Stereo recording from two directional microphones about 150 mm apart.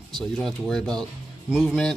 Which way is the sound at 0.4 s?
Centre (ahead or behind).